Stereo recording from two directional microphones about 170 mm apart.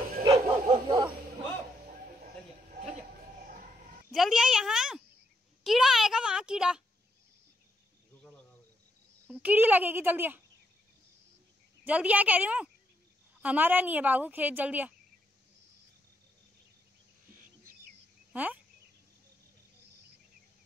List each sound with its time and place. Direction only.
0.3 s dog: 20° right (ahead or behind)
4.1 s a sound: centre (ahead or behind)
9.3 s speech: 10° right (ahead or behind)
11.8 s speech: 10° right (ahead or behind)
18.3 s speech: 10° right (ahead or behind)